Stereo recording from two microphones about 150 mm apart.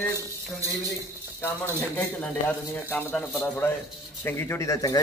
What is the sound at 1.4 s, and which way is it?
Speech, 15° left (ahead or behind).